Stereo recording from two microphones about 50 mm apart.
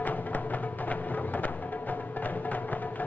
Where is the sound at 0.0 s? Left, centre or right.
Left.